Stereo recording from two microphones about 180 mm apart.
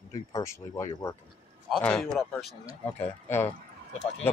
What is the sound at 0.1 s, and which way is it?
Speech, 15° left (ahead or behind).